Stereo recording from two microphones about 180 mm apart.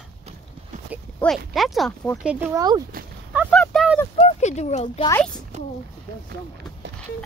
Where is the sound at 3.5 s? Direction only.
5° left (ahead or behind).